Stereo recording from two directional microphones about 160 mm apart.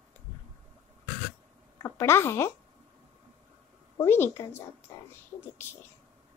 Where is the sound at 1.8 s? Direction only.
15° left (ahead or behind).